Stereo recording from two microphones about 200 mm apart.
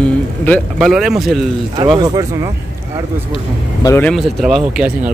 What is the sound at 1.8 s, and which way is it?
Speech, 20° right (ahead or behind).